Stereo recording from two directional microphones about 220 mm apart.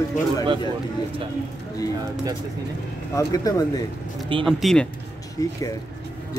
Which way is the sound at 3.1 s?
15° left (ahead or behind).